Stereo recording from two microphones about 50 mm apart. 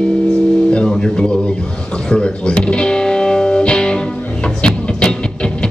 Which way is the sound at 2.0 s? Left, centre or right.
Centre.